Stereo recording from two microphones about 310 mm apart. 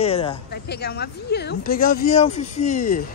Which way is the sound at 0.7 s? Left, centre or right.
Left.